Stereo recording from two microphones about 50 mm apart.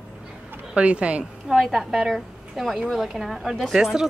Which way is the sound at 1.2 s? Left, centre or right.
Centre.